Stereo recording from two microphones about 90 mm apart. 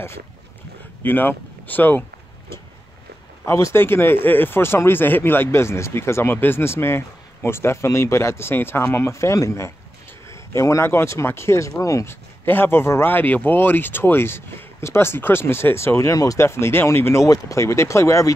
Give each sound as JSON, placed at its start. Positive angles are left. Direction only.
{"t": 1.0, "sound": "speech", "side_deg": 20}
{"t": 3.4, "sound": "speech", "side_deg": 35}